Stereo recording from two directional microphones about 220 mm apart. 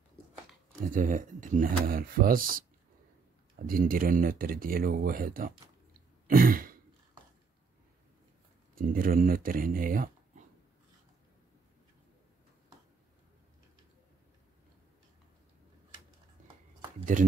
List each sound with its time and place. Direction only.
0.8 s speech: 35° right (ahead or behind)
6.2 s throat clearing: 40° right (ahead or behind)
8.7 s speech: 40° right (ahead or behind)
17.0 s speech: 35° right (ahead or behind)